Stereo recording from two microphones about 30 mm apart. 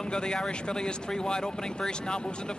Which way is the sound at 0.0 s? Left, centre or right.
Left.